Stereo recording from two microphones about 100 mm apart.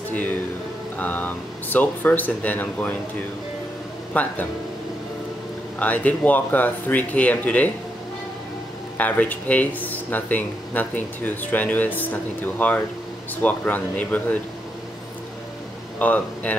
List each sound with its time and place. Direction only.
0.1 s music: 15° left (ahead or behind)
0.9 s speech: 15° left (ahead or behind)
4.1 s speech: 15° left (ahead or behind)
5.8 s speech: 15° left (ahead or behind)
8.9 s speech: 15° left (ahead or behind)
16.0 s speech: 15° left (ahead or behind)